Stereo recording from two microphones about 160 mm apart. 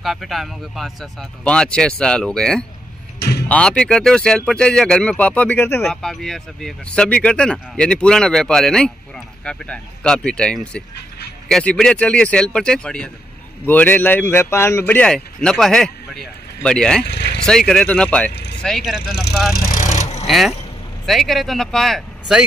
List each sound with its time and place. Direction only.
0.0 s speech: centre (ahead or behind)
3.2 s a sound: 85° left
3.4 s speech: 5° left (ahead or behind)
17.0 s speech: 90° left
17.5 s speech: 5° left (ahead or behind)
19.7 s vehicle: 50° left (ahead or behind)
20.2 s speech: centre (ahead or behind)